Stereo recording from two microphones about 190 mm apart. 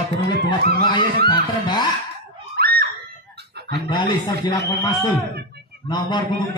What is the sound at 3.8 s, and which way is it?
A man's voice, 25° left (ahead or behind).